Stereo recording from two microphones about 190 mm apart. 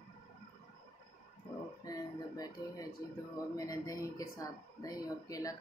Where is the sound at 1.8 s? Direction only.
20° left (ahead or behind).